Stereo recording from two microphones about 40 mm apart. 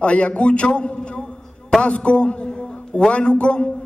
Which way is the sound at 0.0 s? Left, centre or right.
Left.